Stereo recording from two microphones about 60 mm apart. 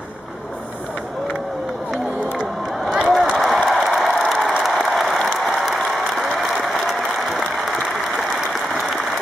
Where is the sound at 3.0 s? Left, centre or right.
Centre.